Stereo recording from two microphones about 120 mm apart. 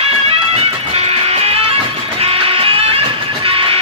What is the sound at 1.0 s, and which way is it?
Music, 60° right (ahead or behind).